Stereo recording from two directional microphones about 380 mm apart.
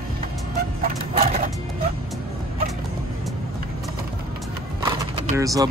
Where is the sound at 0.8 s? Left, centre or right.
Centre.